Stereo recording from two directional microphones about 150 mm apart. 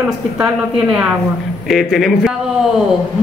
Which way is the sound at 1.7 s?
Centre (ahead or behind).